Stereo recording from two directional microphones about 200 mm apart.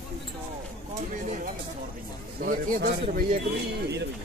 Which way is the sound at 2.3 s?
50° right (ahead or behind).